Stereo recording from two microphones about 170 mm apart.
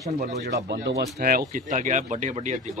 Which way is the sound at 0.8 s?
65° right (ahead or behind).